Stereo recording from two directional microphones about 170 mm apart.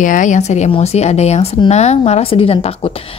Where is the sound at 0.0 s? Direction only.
50° left (ahead or behind).